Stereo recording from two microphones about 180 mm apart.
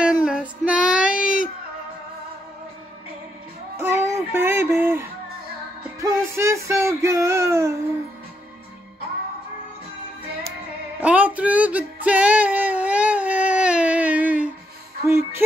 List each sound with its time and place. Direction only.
0.0 s child singing: 5° right (ahead or behind)
3.7 s music: 15° right (ahead or behind)
5.9 s a sound: 15° right (ahead or behind)
11.0 s music: 10° right (ahead or behind)